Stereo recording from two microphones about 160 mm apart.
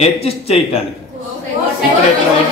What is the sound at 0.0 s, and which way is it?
Speech, 40° left (ahead or behind).